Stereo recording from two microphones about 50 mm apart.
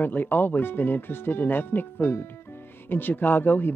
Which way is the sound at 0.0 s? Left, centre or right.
Left.